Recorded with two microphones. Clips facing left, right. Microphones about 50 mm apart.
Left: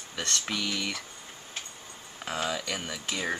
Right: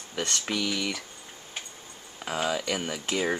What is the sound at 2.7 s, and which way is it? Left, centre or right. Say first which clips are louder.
Speech: right 4 dB; centre.